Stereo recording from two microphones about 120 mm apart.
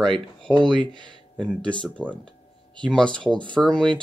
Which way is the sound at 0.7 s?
40° right (ahead or behind).